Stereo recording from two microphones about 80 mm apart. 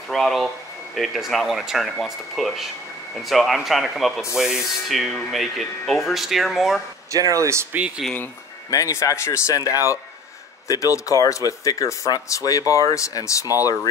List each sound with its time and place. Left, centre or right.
0.1 s speech: centre
7.1 s speech: right
8.6 s speech: left